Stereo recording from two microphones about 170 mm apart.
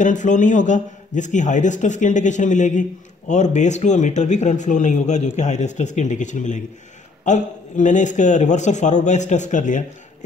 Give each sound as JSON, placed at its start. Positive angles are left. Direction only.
{"t": 0.0, "sound": "speech", "side_deg": 45}